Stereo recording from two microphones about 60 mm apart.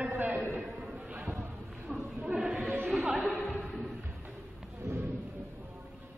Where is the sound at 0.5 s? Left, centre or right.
Right.